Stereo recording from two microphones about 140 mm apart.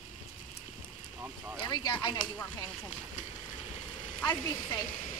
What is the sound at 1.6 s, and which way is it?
Speech, 30° left (ahead or behind).